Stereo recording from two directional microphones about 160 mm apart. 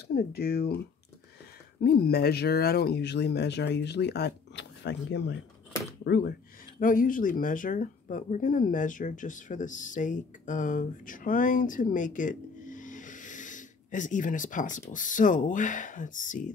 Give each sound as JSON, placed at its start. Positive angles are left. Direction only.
{"t": 0.1, "sound": "speech", "side_deg": 75}
{"t": 1.8, "sound": "speech", "side_deg": 80}
{"t": 6.8, "sound": "speech", "side_deg": 60}